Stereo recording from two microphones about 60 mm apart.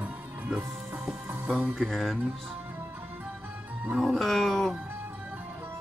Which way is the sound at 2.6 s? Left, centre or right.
Right.